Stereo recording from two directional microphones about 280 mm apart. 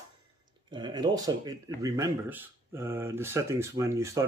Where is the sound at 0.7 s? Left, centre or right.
Centre.